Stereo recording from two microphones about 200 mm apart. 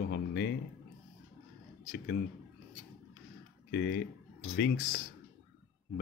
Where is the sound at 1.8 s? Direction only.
50° left (ahead or behind).